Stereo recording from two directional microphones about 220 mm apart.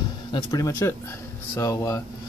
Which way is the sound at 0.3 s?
15° left (ahead or behind).